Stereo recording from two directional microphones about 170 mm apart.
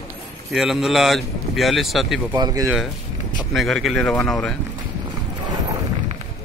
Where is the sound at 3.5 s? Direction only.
Centre (ahead or behind).